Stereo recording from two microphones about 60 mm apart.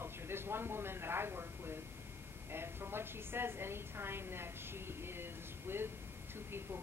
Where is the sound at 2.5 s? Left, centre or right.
Right.